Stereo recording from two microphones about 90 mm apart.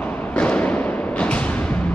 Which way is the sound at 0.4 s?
15° left (ahead or behind).